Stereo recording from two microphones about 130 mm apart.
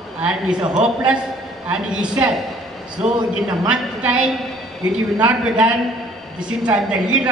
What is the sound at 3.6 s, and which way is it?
A man's voice, 5° right (ahead or behind).